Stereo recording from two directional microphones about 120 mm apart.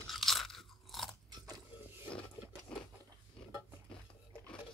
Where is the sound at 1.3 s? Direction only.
30° right (ahead or behind).